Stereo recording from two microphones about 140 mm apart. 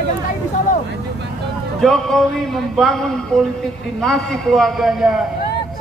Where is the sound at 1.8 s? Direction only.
5° left (ahead or behind).